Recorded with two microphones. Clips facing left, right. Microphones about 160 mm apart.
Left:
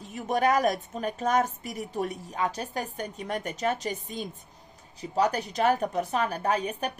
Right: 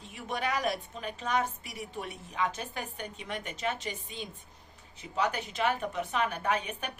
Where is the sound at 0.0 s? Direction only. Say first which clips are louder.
Left 9 dB; 40° left (ahead or behind).